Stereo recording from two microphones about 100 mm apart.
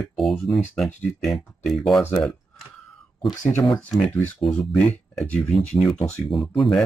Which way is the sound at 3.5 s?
15° left (ahead or behind).